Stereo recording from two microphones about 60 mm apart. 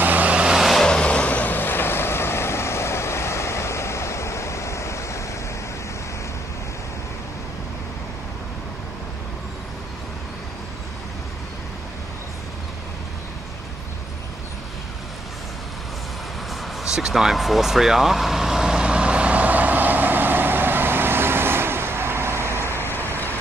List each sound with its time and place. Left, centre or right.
0.0 s vehicle: right
0.6 s vehicle: centre
0.8 s vehicle: centre; by 5.2 s left
16.8 s vehicle: centre; by 22.8 s right
22.8 s vehicle: left